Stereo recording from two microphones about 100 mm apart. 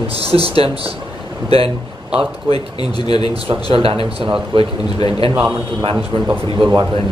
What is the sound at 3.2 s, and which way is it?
Speech, 70° right (ahead or behind).